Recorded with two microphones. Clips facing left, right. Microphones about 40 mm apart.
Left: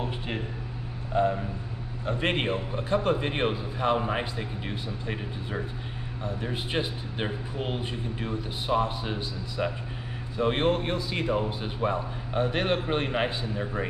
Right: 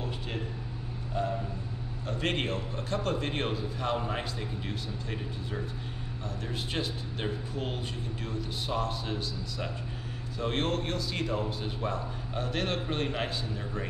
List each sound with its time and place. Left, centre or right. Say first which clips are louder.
1.1 s vehicle: left 7 dB; left
2.0 s a man's voice: left 4 dB; left